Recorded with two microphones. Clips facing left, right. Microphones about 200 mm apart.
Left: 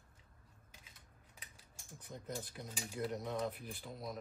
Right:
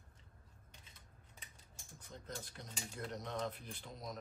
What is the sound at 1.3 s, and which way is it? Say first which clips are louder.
Speech: even; 5° left (ahead or behind).